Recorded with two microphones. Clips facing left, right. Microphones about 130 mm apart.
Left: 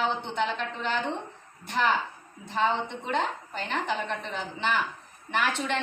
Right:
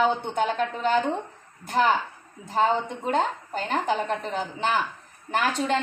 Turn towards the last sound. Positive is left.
turn(degrees=-40)  # may be behind; listen again after turning